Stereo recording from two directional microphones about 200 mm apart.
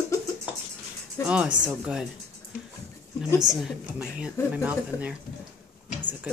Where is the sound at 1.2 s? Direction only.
15° left (ahead or behind).